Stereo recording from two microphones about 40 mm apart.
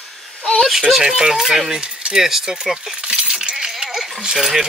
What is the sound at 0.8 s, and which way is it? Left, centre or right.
Speech, centre.